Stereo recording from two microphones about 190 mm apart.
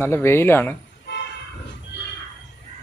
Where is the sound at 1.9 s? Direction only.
60° left (ahead or behind).